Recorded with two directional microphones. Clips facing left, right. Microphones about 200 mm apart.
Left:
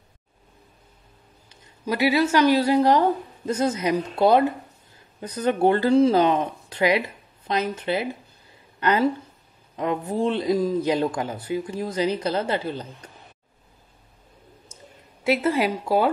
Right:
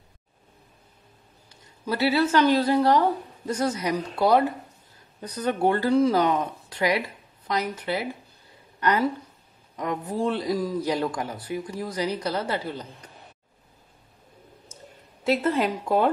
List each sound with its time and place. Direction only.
1.9 s a man's voice: 15° left (ahead or behind)
8.7 s a sound: 25° left (ahead or behind)
9.8 s a man's voice: 25° left (ahead or behind)
15.2 s speech: 10° left (ahead or behind)